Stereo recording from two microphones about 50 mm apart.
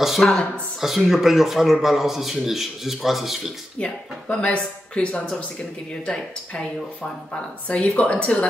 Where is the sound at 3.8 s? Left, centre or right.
Left.